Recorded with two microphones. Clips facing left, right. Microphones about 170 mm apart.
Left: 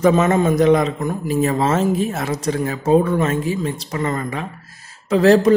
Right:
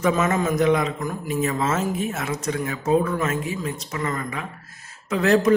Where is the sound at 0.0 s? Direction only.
30° left (ahead or behind).